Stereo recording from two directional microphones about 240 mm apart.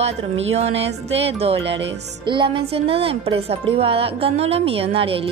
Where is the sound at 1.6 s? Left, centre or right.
Right.